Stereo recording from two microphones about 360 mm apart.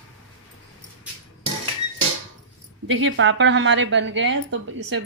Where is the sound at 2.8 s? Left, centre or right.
Right.